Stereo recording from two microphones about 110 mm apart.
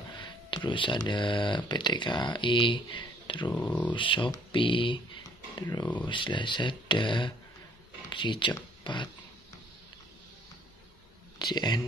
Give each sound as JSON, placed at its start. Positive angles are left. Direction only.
{"t": 0.1, "sound": "speech", "side_deg": 45}
{"t": 3.5, "sound": "speech", "side_deg": 15}
{"t": 3.9, "sound": "speech", "side_deg": 50}
{"t": 5.6, "sound": "speech", "side_deg": 40}
{"t": 11.5, "sound": "speech", "side_deg": 40}